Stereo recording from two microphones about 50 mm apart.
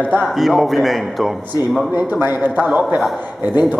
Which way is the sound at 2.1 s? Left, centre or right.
Right.